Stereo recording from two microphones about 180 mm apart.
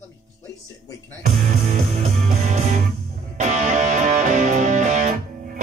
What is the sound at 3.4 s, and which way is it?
Music, 40° right (ahead or behind).